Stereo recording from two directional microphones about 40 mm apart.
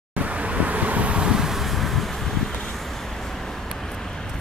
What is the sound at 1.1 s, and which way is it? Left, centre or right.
Vehicle, centre.